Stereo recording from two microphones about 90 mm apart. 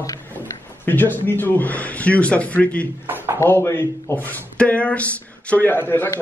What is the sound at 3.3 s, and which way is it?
A man's voice, 30° left (ahead or behind).